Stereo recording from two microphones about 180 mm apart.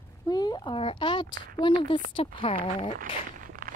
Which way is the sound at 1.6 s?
25° left (ahead or behind).